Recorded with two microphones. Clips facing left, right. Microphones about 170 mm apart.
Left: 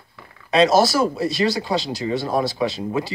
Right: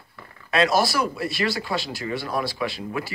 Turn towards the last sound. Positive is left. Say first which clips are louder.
# left 5 dB
turn(degrees=20)  # may be behind; listen again after turning